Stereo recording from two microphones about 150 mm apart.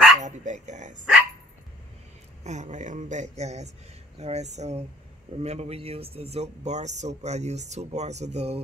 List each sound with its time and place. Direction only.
0.2 s speech: 50° right (ahead or behind)
2.4 s speech: 50° right (ahead or behind)